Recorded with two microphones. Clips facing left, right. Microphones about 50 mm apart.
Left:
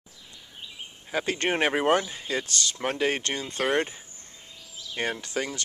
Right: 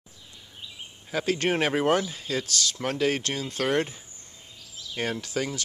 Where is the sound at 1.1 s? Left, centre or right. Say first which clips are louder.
Right 1 dB; centre.